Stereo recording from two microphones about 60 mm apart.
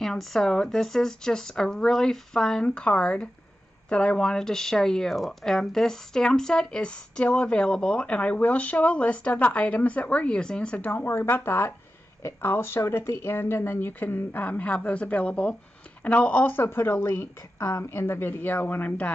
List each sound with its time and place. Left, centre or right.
0.0 s speech: centre
2.6 s speech: centre
10.8 s speech: left
17.6 s a woman's voice: left
17.9 s speech: left